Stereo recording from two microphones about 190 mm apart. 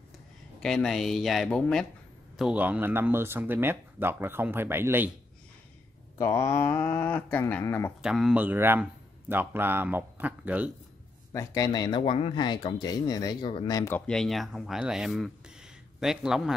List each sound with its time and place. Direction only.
0.6 s speech: centre (ahead or behind)
6.1 s speech: 15° left (ahead or behind)
8.0 s speech: 5° right (ahead or behind)
11.3 s speech: 20° left (ahead or behind); by 16.5 s 5° right (ahead or behind)